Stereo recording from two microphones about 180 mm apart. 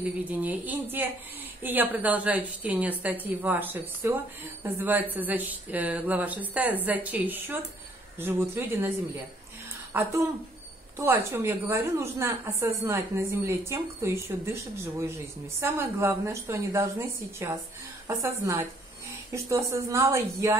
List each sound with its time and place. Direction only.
0.0 s a woman's voice: 10° right (ahead or behind)
9.9 s a woman's voice: 15° right (ahead or behind)